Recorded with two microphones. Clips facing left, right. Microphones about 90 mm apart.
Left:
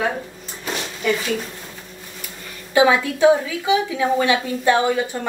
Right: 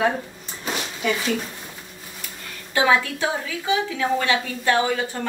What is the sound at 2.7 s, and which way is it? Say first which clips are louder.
A woman's voice: left 4 dB; 20° left (ahead or behind).